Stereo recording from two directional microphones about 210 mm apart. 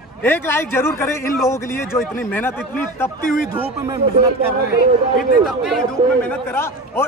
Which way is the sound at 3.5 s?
20° right (ahead or behind).